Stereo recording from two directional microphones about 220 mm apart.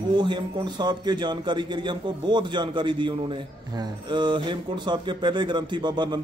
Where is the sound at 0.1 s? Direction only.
20° right (ahead or behind).